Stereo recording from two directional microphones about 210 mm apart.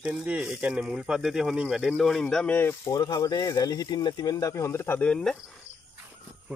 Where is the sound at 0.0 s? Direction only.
5° right (ahead or behind).